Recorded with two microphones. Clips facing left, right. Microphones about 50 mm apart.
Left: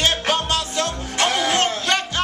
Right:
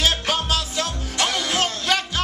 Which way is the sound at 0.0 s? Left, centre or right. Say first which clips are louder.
Left 2 dB; centre.